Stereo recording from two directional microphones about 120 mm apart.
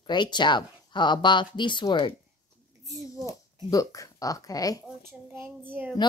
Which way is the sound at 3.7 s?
30° left (ahead or behind).